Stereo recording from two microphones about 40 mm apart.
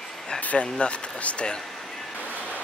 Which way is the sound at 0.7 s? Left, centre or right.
Left.